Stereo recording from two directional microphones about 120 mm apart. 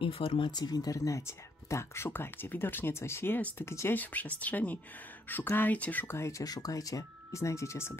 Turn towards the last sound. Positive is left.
turn(degrees=25)  # may be behind; listen again after turning